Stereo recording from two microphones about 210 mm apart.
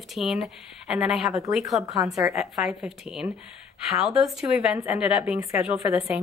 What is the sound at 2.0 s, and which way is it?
Speech, 15° right (ahead or behind).